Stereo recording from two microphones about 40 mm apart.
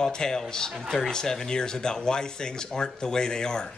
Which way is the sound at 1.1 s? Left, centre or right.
Centre.